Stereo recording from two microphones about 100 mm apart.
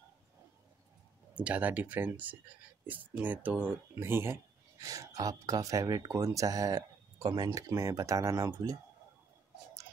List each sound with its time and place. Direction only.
1.3 s speech: 15° right (ahead or behind)
4.7 s speech: 35° right (ahead or behind)